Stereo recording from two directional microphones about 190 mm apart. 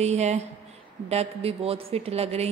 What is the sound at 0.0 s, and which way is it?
A woman's voice, 35° right (ahead or behind).